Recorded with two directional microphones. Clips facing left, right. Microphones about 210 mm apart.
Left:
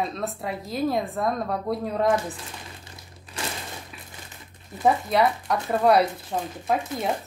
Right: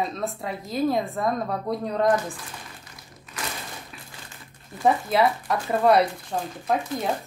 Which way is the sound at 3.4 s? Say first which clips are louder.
Left 1 dB; 25° left (ahead or behind).